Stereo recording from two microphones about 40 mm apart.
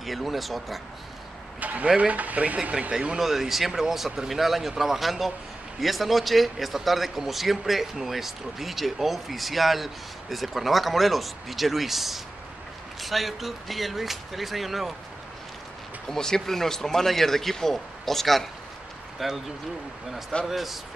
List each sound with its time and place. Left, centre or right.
0.0 s a man's voice: centre
1.6 s speech: right
3.2 s a man's voice: centre
16.1 s speech: centre
20.4 s a man's voice: centre